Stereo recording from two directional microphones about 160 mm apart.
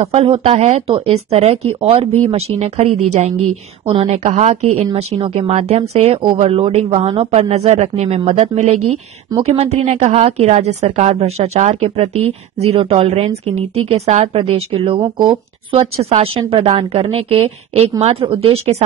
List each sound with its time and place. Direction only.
0.1 s speech: 40° right (ahead or behind)